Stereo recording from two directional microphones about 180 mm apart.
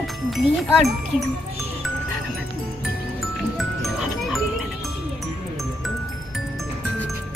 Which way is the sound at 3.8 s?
Centre (ahead or behind).